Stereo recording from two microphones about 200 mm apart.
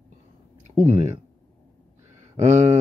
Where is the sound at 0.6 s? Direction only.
35° right (ahead or behind).